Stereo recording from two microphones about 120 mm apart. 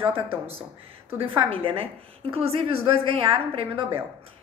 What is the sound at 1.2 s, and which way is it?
A woman's voice, 50° right (ahead or behind).